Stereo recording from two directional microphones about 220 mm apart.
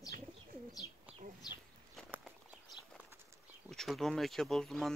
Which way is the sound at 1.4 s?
20° left (ahead or behind).